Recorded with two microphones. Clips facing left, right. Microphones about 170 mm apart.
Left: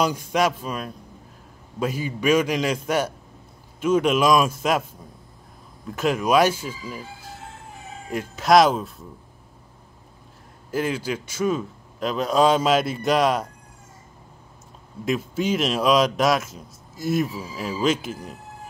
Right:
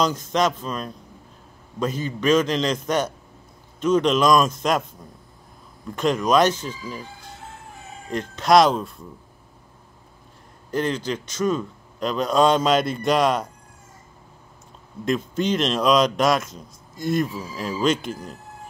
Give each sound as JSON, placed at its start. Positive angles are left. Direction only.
{"t": 0.0, "sound": "speech", "side_deg": 10}
{"t": 5.9, "sound": "speech", "side_deg": 5}
{"t": 10.7, "sound": "speech", "side_deg": 5}
{"t": 15.0, "sound": "speech", "side_deg": 5}